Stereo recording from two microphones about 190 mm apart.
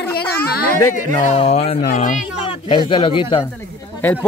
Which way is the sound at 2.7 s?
25° left (ahead or behind).